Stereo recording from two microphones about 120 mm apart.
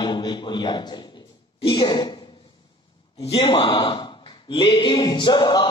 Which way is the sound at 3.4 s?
40° left (ahead or behind).